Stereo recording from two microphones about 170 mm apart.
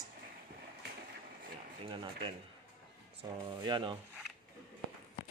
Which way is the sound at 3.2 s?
20° right (ahead or behind).